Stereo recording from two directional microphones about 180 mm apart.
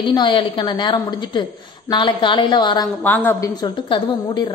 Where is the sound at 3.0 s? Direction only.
10° left (ahead or behind).